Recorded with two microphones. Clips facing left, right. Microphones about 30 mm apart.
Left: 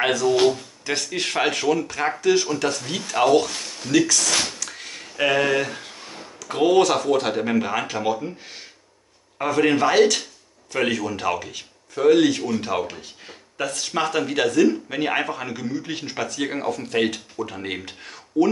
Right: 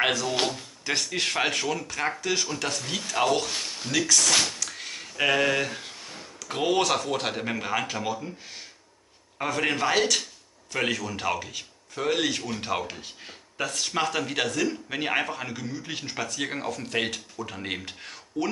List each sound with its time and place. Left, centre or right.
0.0 s a man's voice: centre
4.6 s a sound: centre
5.9 s a sound: centre
6.4 s a man's voice: centre
8.1 s speech: centre
9.4 s a man's voice: centre